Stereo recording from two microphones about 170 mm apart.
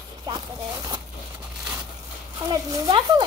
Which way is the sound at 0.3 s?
25° right (ahead or behind).